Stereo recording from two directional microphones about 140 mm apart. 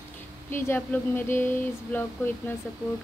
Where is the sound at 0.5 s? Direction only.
15° left (ahead or behind).